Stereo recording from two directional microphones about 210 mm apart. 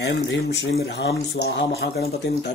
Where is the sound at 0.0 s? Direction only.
55° left (ahead or behind).